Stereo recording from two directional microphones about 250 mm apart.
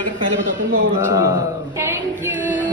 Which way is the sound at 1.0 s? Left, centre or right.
Centre.